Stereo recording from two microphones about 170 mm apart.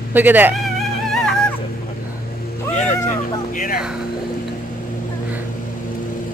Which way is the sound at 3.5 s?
55° left (ahead or behind).